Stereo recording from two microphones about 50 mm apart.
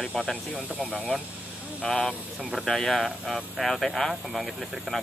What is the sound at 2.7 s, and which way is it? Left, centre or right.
Speech, centre.